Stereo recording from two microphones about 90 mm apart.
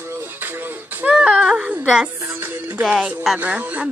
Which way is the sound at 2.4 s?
15° right (ahead or behind).